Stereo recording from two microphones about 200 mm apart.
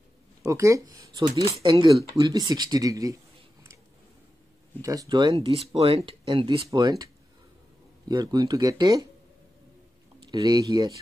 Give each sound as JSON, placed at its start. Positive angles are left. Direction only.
{"t": 0.4, "sound": "speech", "side_deg": -15}
{"t": 4.8, "sound": "speech", "side_deg": -15}
{"t": 8.1, "sound": "speech", "side_deg": -20}
{"t": 10.3, "sound": "speech", "side_deg": -20}